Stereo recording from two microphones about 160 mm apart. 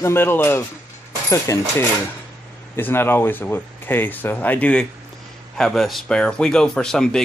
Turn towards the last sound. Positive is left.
turn(degrees=5)  # may be behind; listen again after turning